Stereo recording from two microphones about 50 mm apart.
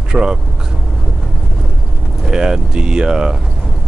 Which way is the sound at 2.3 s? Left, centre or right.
Centre.